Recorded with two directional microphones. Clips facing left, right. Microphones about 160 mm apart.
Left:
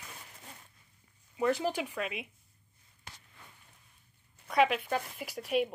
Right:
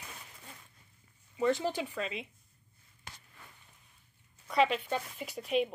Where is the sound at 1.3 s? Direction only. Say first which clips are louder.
Even; 10° left (ahead or behind).